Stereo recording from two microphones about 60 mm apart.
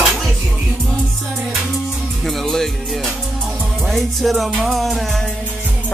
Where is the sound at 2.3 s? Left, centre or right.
Centre.